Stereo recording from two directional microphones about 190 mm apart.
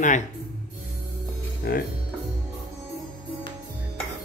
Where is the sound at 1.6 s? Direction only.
55° left (ahead or behind).